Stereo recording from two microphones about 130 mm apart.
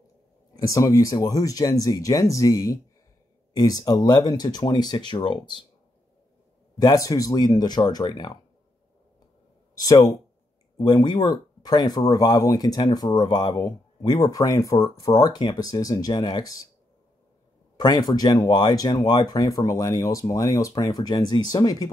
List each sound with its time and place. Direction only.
0.6 s speech: 25° left (ahead or behind)
6.8 s speech: 30° left (ahead or behind)
9.8 s speech: 25° left (ahead or behind)
17.7 s speech: 30° left (ahead or behind)